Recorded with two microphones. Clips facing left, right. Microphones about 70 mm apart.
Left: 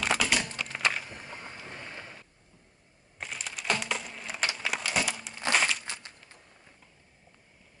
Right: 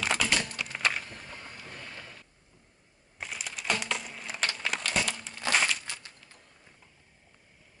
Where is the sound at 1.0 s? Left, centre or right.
Centre.